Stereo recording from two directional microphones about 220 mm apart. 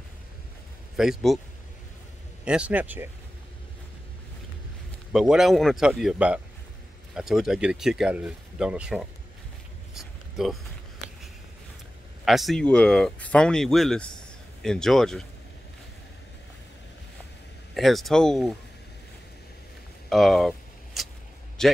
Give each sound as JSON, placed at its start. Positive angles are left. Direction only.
{"t": 0.9, "sound": "speech", "side_deg": 0}
{"t": 2.4, "sound": "speech", "side_deg": -5}
{"t": 5.1, "sound": "speech", "side_deg": 0}
{"t": 9.9, "sound": "a sound", "side_deg": 0}
{"t": 12.3, "sound": "speech", "side_deg": 0}
{"t": 17.7, "sound": "speech", "side_deg": 0}
{"t": 20.1, "sound": "a sound", "side_deg": 0}
{"t": 21.6, "sound": "speech", "side_deg": 0}